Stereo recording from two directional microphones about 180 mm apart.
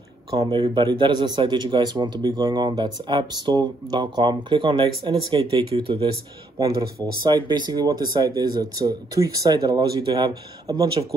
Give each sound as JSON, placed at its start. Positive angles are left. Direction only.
{"t": 0.4, "sound": "speech", "side_deg": -25}
{"t": 7.2, "sound": "speech", "side_deg": -25}